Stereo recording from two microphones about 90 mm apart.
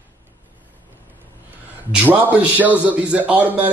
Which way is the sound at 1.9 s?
15° right (ahead or behind).